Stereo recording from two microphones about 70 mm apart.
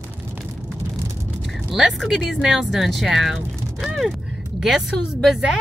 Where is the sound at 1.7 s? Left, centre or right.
Centre.